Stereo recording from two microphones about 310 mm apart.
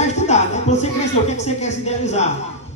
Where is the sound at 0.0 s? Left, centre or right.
Left.